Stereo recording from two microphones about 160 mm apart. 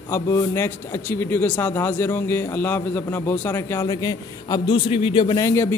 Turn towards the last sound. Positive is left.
turn(degrees=20)  # may be behind; listen again after turning